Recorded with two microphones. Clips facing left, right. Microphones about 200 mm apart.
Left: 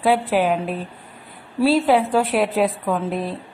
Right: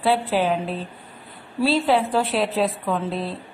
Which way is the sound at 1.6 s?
5° left (ahead or behind).